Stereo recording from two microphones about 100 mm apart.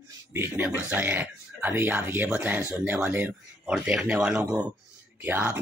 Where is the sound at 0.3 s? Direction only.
20° right (ahead or behind).